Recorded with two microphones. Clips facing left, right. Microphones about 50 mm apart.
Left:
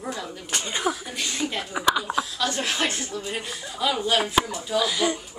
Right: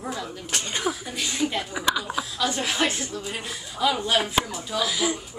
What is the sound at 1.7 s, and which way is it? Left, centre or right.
Speech, centre.